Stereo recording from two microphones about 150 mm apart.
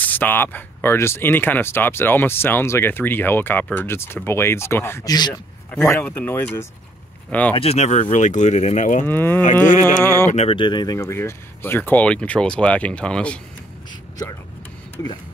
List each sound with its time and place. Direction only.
0.0 s speech: 10° left (ahead or behind)
5.3 s speech: 5° left (ahead or behind)
7.5 s speech: 45° left (ahead or behind)
9.0 s speech: 15° left (ahead or behind)
10.3 s speech: 40° left (ahead or behind)
11.0 s speech: 20° left (ahead or behind)